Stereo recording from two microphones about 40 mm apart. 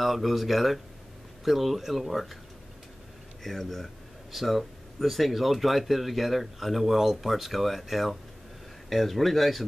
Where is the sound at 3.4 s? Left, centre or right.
Centre.